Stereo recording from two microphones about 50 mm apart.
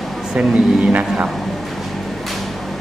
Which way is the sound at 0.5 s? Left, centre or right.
Right.